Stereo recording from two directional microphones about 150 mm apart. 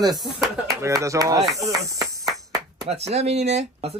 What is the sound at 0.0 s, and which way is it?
Speech, 25° right (ahead or behind).